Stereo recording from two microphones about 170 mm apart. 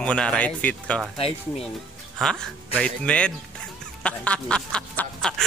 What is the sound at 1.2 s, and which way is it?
Speech, 35° left (ahead or behind).